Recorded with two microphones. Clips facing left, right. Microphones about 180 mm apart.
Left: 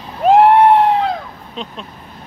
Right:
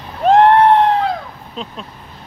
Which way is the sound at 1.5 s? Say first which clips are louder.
Even; centre (ahead or behind).